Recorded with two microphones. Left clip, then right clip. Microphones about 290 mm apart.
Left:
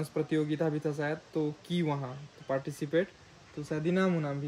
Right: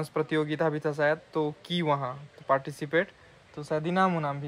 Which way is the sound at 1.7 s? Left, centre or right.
Centre.